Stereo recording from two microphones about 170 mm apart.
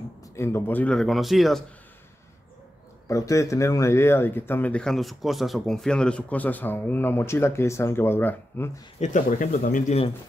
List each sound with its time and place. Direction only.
0.4 s a man's voice: 15° left (ahead or behind); by 1.6 s centre (ahead or behind)
3.1 s speech: 20° left (ahead or behind)
9.0 s speech: 50° left (ahead or behind)